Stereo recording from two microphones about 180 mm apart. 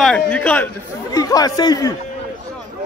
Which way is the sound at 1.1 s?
20° left (ahead or behind).